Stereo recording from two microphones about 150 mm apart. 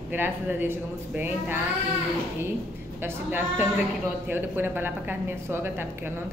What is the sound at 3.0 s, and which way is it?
A woman's voice, 15° right (ahead or behind).